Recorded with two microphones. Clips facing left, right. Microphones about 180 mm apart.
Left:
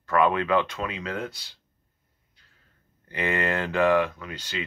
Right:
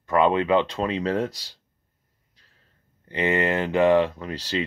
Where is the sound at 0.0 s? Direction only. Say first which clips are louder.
Right 2 dB; 20° right (ahead or behind); by 1.6 s 40° right (ahead or behind).